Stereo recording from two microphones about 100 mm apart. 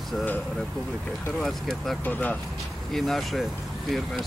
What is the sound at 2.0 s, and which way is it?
Speech, 15° left (ahead or behind).